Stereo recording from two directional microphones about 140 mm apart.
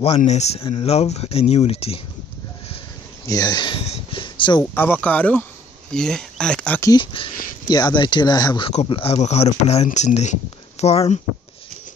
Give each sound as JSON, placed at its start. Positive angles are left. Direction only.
{"t": 0.2, "sound": "speech", "side_deg": 55}
{"t": 3.3, "sound": "speech", "side_deg": 30}
{"t": 3.8, "sound": "a sound", "side_deg": 45}
{"t": 4.7, "sound": "speech", "side_deg": 15}
{"t": 6.8, "sound": "speech", "side_deg": 30}